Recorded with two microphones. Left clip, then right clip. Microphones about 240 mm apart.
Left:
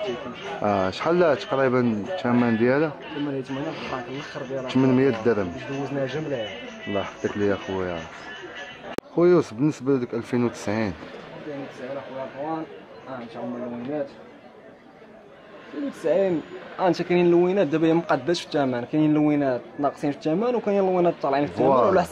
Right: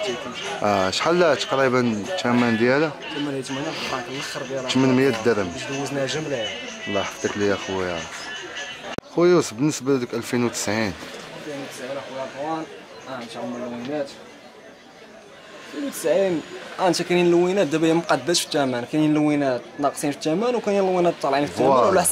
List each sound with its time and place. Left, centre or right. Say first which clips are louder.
0.0 s speech: right 3 dB; centre
9.2 s speech: right 1 dB; centre
11.5 s a sound: right 2 dB; centre
13.1 s speech: right 2 dB; left
15.7 s speech: right 2 dB; centre